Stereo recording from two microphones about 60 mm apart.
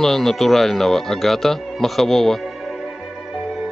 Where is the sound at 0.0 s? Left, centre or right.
Centre.